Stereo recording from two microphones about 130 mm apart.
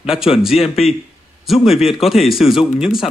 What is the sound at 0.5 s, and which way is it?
Speech, 55° left (ahead or behind).